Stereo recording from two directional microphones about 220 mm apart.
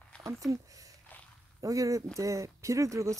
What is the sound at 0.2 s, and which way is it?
Speech, 15° right (ahead or behind).